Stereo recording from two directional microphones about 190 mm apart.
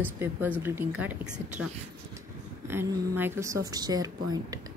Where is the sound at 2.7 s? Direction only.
15° right (ahead or behind).